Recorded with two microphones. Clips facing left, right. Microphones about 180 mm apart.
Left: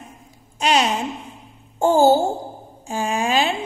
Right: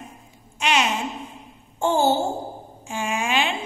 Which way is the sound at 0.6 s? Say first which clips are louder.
Left 4 dB; 35° left (ahead or behind).